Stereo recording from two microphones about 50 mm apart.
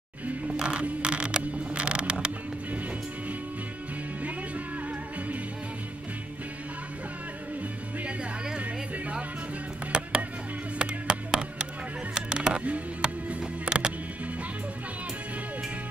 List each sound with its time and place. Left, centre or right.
0.6 s a sound: centre
9.9 s music: centre
13.4 s music: centre